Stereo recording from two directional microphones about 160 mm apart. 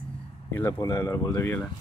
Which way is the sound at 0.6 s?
20° left (ahead or behind).